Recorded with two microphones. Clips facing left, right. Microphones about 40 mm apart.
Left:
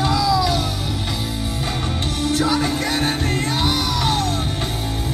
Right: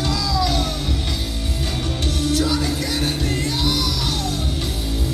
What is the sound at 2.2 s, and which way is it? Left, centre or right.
Music, left.